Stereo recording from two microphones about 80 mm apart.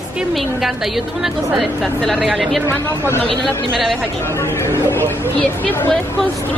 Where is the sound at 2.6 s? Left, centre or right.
Left.